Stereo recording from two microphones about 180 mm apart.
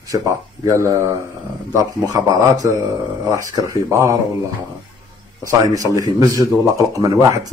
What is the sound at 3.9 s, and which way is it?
Speech, 15° right (ahead or behind).